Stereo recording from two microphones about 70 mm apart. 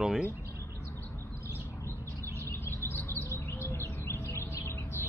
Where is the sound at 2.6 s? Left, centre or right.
Left.